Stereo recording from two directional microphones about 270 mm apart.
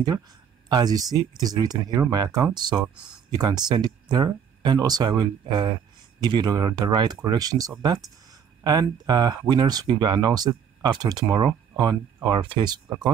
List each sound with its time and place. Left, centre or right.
0.7 s speech: centre